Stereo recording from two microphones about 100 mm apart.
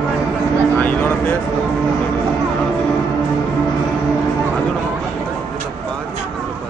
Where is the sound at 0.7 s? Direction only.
15° left (ahead or behind).